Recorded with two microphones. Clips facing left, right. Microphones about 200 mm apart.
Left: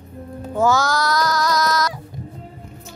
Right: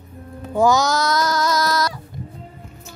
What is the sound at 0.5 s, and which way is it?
Music, 15° right (ahead or behind).